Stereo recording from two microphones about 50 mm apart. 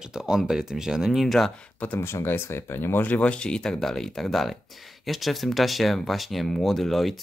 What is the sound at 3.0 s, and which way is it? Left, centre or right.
Speech, left.